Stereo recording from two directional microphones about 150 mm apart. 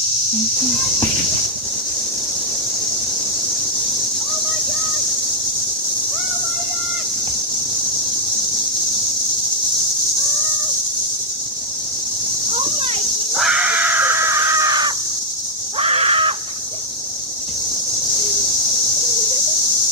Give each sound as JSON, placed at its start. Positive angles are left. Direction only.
{"t": 12.5, "sound": "a sound", "side_deg": -40}
{"t": 13.3, "sound": "crow", "side_deg": -5}
{"t": 15.8, "sound": "crow", "side_deg": -40}